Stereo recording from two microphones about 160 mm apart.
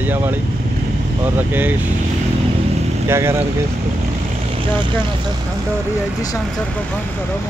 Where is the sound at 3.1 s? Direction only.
15° right (ahead or behind).